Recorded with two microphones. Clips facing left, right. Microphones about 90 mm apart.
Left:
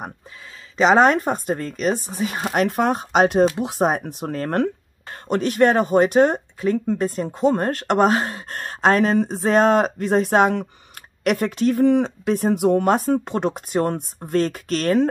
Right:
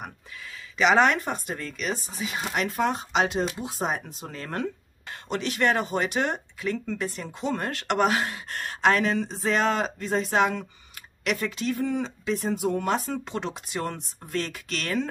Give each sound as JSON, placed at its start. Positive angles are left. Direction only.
{"t": 0.7, "sound": "speech", "side_deg": 35}